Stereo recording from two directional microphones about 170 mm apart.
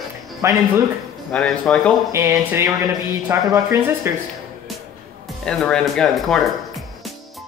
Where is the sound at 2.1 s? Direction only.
15° right (ahead or behind).